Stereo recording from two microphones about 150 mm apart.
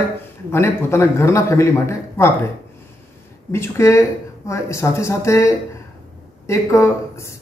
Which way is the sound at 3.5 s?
15° left (ahead or behind).